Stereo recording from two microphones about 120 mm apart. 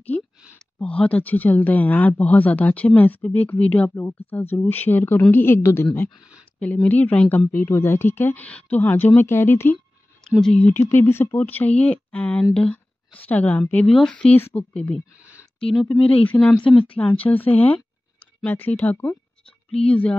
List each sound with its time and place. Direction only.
0.1 s a sound: 10° left (ahead or behind)
0.6 s speech: 10° left (ahead or behind)
10.2 s speech: 5° left (ahead or behind)
10.7 s speech: 20° left (ahead or behind)